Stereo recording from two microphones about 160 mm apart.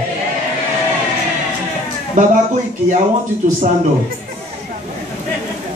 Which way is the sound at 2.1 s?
50° right (ahead or behind).